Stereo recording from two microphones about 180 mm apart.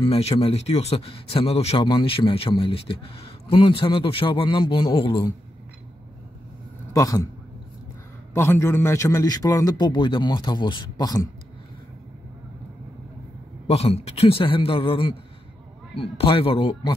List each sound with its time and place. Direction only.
0.0 s speech: 35° left (ahead or behind)
6.9 s a man's voice: 20° left (ahead or behind)
8.4 s a man's voice: 15° left (ahead or behind)
13.7 s speech: 35° left (ahead or behind)